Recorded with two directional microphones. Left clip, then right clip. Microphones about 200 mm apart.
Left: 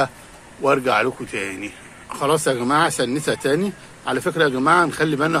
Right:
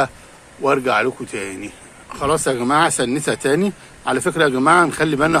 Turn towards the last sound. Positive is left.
turn(degrees=-15)  # may be behind; listen again after turning